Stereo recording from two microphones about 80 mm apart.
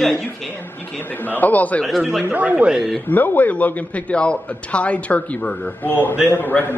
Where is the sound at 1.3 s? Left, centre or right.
Left.